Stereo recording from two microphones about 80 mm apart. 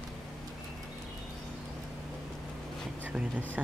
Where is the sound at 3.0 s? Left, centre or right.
Centre.